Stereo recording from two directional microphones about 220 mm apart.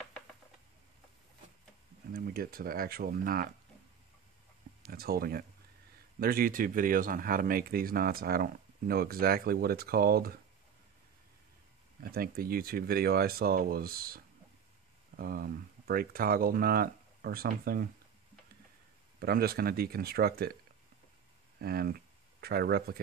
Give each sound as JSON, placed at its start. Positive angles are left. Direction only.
{"t": 2.1, "sound": "speech", "side_deg": -45}
{"t": 4.8, "sound": "speech", "side_deg": -45}
{"t": 12.0, "sound": "speech", "side_deg": -40}
{"t": 19.1, "sound": "speech", "side_deg": -45}
{"t": 21.5, "sound": "speech", "side_deg": -45}